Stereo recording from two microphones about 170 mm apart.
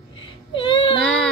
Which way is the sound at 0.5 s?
30° left (ahead or behind).